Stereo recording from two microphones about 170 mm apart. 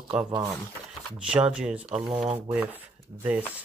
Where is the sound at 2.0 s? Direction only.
30° right (ahead or behind).